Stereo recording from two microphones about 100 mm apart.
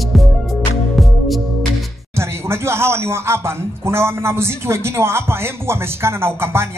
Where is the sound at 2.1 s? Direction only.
25° right (ahead or behind).